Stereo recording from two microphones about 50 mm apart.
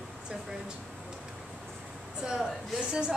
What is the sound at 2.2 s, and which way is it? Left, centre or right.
Speech, centre.